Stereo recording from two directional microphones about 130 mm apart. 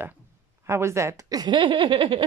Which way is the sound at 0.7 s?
20° right (ahead or behind).